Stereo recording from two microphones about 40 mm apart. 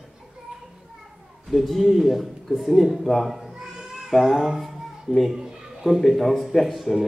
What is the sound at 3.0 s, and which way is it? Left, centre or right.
Speech, centre.